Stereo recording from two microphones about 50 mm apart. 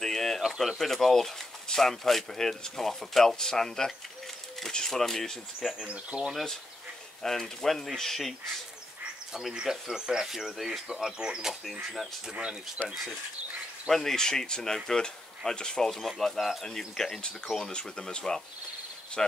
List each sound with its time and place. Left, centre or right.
0.0 s a sound: centre
0.6 s speech: centre
6.0 s speech: centre
7.2 s speech: centre
9.3 s speech: centre
12.8 s speech: centre